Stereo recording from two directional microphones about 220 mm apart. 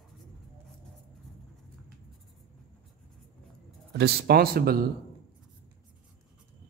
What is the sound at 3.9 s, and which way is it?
Speech, 45° right (ahead or behind).